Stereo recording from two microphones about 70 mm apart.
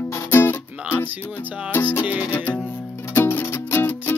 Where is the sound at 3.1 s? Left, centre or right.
Left.